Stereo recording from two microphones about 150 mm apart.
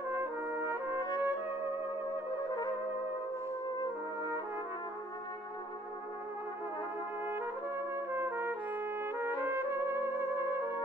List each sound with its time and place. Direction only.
0.2 s brass instrument: 15° right (ahead or behind)
1.2 s trumpet: 15° right (ahead or behind)
2.3 s trumpet: 25° left (ahead or behind)
7.9 s trumpet: 15° right (ahead or behind)